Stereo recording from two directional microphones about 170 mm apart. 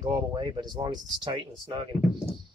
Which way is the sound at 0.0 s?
25° right (ahead or behind).